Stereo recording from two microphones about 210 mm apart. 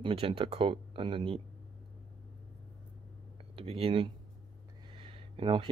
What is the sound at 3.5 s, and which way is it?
Speech, 25° right (ahead or behind).